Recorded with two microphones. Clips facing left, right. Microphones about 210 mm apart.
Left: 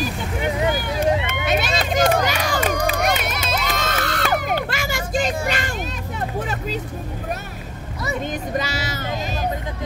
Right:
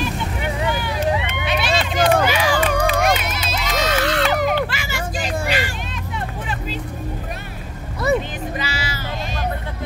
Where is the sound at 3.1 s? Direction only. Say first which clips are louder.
Even; 50° left (ahead or behind).